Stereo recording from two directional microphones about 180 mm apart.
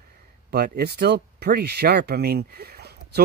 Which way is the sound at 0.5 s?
60° right (ahead or behind).